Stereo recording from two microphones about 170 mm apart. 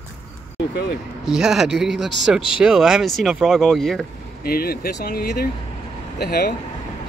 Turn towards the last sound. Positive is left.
turn(degrees=70)  # may be behind; listen again after turning